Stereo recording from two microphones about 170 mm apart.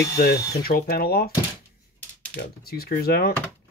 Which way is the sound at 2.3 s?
65° left (ahead or behind).